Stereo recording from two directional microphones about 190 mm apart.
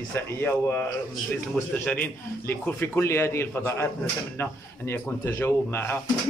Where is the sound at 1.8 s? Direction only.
5° left (ahead or behind).